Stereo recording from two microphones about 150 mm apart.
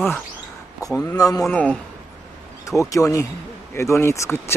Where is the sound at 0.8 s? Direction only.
25° left (ahead or behind).